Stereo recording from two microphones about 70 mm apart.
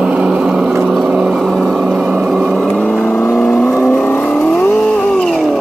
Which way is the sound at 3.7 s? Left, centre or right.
Left.